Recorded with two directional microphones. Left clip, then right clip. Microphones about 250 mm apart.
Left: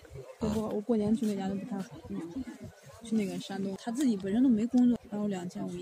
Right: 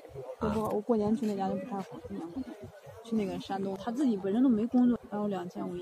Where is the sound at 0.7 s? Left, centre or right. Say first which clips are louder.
Right 1 dB; left.